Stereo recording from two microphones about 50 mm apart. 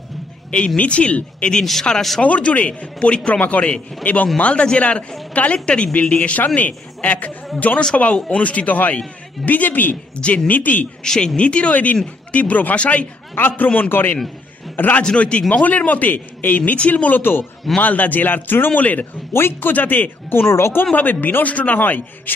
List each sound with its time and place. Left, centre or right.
0.7 s a man's voice: left
1.6 s speech: centre
2.2 s a man's voice: left
7.9 s a man's voice: left
10.1 s speech: left
11.1 s a man's voice: centre
13.3 s speech: left
15.0 s a man's voice: left
19.3 s speech: left
19.7 s speech: left
20.9 s speech: left